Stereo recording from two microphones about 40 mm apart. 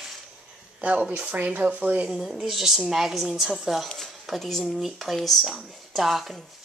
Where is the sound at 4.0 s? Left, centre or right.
Centre.